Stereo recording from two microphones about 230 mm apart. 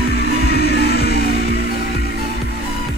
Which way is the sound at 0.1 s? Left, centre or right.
Left.